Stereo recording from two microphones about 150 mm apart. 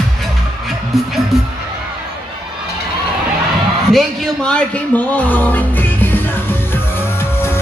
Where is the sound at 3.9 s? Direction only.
5° left (ahead or behind).